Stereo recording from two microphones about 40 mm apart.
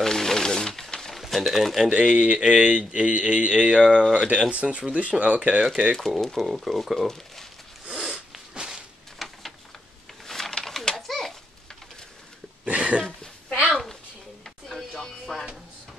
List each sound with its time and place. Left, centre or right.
0.0 s wild animals: centre
1.3 s speech: centre
2.0 s speech: right
5.9 s speech: centre
6.4 s speech: centre
8.5 s whip: centre
9.2 s a sound: centre
12.6 s a sound: right
13.7 s a sound: centre
14.8 s music: centre